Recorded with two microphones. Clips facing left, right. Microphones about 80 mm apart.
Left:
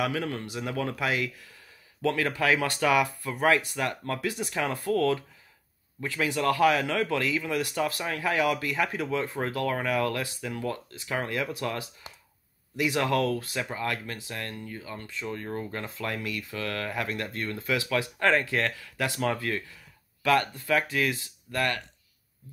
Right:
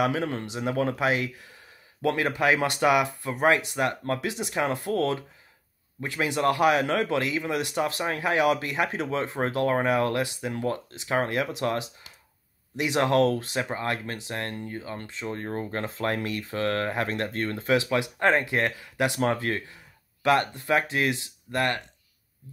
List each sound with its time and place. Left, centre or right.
0.1 s speech: right